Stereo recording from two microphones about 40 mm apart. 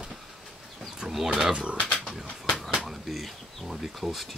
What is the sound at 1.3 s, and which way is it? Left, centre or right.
Speech, centre.